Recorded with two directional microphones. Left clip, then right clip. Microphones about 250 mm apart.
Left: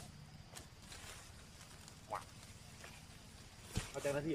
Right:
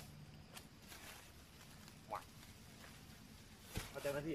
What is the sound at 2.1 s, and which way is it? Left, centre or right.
Vehicle, centre.